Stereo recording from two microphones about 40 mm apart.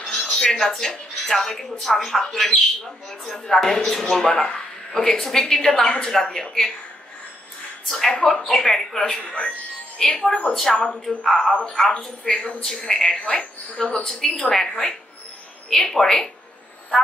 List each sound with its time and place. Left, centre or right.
0.0 s speech: centre
4.5 s a sound: centre
5.2 s speech: centre
7.9 s speech: centre
8.2 s a woman's voice: left
8.5 s speech: centre
10.8 s a woman's voice: left
11.2 s speech: centre
13.2 s a woman's voice: left
14.0 s speech: centre